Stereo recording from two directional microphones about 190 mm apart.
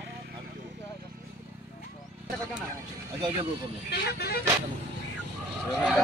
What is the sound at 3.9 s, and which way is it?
Speech, 60° left (ahead or behind).